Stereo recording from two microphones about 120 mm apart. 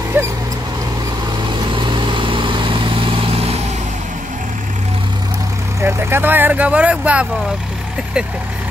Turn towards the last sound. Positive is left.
turn(degrees=-10)  # may be behind; listen again after turning